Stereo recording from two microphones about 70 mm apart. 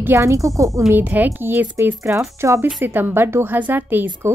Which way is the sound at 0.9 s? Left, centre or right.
Right.